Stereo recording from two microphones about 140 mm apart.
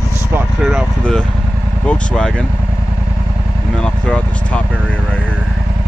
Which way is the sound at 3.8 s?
5° left (ahead or behind).